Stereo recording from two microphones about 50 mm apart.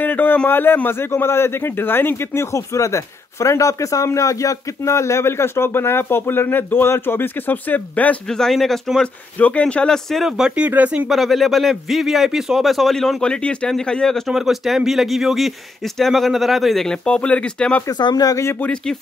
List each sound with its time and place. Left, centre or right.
0.0 s a sound: left
0.5 s a man's voice: left
2.3 s speech: left
8.3 s speech: centre
8.5 s speech: centre
9.4 s speech: left
10.1 s speech: centre
12.6 s speech: centre
13.2 s speech: centre
14.2 s speech: centre
16.8 s speech: centre